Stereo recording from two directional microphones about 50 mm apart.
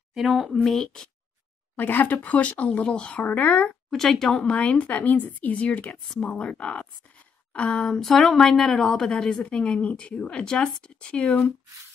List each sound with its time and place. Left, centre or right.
0.1 s speech: centre
1.8 s speech: left
3.9 s speech: centre
4.4 s speech: left
7.7 s speech: centre